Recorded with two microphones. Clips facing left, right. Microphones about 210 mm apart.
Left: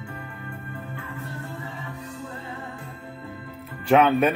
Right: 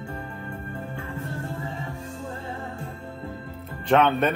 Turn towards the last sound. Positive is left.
turn(degrees=10)  # may be behind; listen again after turning